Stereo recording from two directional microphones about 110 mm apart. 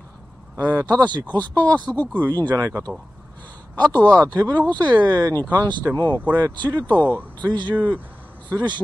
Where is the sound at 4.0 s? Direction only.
10° left (ahead or behind).